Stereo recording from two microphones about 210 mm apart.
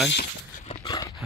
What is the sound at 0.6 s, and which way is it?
Dog, 25° left (ahead or behind).